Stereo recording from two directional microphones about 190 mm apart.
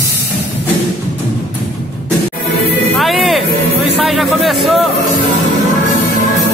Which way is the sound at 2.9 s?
Centre (ahead or behind).